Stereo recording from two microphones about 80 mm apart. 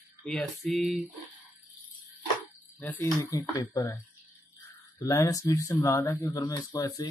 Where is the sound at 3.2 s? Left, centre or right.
Left.